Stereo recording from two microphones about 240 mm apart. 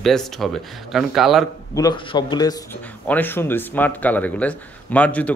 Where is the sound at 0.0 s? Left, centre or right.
Centre.